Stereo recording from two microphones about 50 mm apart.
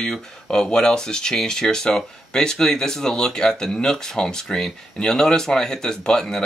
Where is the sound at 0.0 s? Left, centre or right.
Centre.